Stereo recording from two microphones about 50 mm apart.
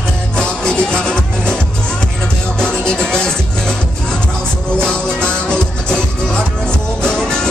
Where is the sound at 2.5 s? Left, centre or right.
Centre.